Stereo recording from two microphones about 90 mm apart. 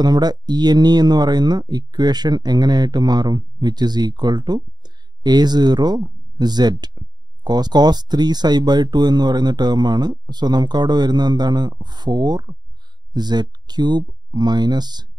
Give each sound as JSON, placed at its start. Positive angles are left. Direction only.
{"t": 0.0, "sound": "speech", "side_deg": -50}